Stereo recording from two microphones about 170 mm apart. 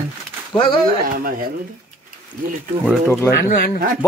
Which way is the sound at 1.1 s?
60° right (ahead or behind).